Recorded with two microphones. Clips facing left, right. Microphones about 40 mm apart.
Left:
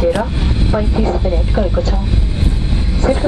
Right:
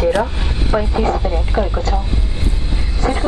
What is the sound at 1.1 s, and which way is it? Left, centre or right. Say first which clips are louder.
Speech: left 2 dB; centre.